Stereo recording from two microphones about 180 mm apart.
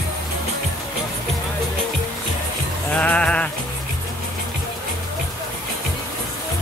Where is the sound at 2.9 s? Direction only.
10° left (ahead or behind).